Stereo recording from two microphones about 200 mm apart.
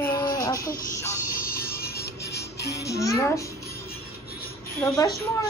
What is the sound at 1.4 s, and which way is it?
Music, 50° left (ahead or behind).